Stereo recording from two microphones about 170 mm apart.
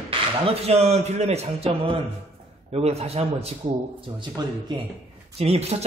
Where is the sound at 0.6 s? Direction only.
40° right (ahead or behind).